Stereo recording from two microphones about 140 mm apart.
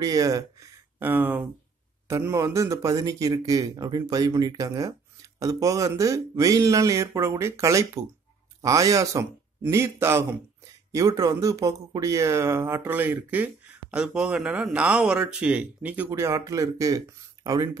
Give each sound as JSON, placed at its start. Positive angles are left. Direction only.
{"t": 0.0, "sound": "speech", "side_deg": -25}
{"t": 0.9, "sound": "speech", "side_deg": -15}